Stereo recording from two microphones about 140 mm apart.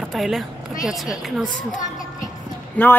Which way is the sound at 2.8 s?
10° left (ahead or behind).